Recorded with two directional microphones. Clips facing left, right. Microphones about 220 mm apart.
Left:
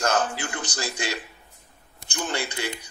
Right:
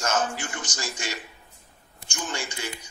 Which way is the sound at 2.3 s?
65° left (ahead or behind).